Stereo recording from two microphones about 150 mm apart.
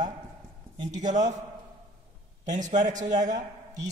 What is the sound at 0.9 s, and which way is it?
Speech, 55° right (ahead or behind).